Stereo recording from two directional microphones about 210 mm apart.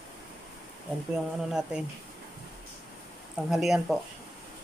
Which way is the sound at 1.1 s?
5° right (ahead or behind).